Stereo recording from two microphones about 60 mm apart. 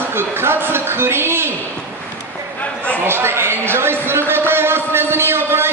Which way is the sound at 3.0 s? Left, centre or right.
Right.